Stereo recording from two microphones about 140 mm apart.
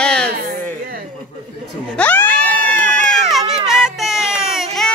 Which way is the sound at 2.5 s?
70° right (ahead or behind).